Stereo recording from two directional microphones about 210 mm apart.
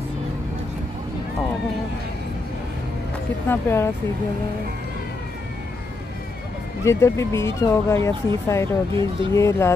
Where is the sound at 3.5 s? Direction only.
10° left (ahead or behind).